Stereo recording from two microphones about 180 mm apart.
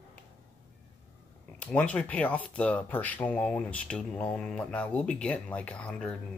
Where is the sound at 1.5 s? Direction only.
5° left (ahead or behind).